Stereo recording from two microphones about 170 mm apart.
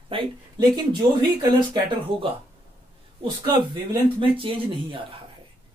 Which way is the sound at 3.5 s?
30° right (ahead or behind).